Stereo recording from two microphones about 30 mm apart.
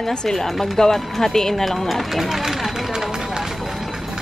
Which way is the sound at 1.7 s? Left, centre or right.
Centre.